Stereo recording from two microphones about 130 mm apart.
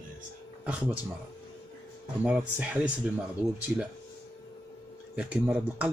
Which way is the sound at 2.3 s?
10° right (ahead or behind).